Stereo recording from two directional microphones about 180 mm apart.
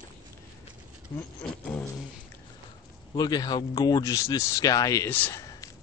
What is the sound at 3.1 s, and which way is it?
Speech, 20° left (ahead or behind).